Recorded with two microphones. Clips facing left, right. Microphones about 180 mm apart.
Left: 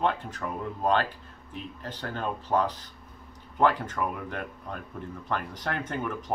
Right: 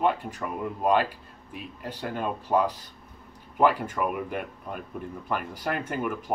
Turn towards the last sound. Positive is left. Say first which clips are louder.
# right 2 dB
turn(degrees=-10)  # may be behind; listen again after turning